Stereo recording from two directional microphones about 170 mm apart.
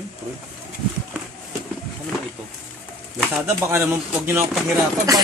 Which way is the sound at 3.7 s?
15° right (ahead or behind).